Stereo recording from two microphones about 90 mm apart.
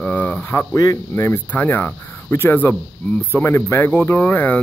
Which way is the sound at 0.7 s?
35° left (ahead or behind).